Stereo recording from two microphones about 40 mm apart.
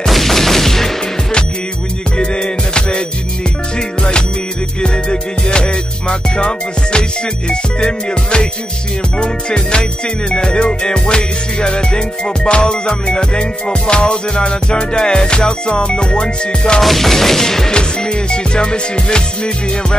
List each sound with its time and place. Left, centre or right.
0.0 s fusillade: centre
2.1 s music: left
4.8 s music: left
16.8 s music: centre
17.7 s music: left